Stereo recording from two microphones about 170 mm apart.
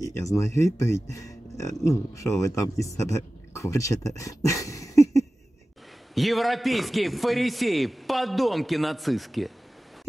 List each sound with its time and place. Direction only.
0.0 s speech: 20° left (ahead or behind)
6.1 s a man's voice: centre (ahead or behind)